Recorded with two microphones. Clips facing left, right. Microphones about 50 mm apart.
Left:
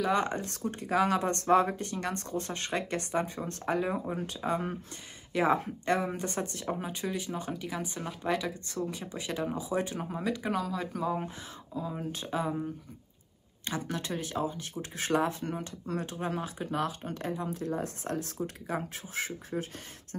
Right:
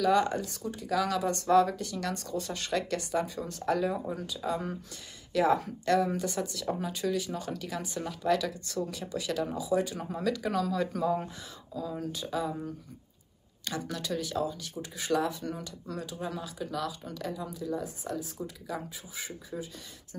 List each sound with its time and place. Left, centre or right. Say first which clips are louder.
0.0 s speech: right 3 dB; left
0.5 s speech: left 1 dB; left
9.9 s speech: even; centre
10.2 s speech: right 3 dB; left
11.2 s speech: left 2 dB; left
13.7 s speech: even; left
17.8 s speech: left 2 dB; left
18.7 s speech: left 3 dB; left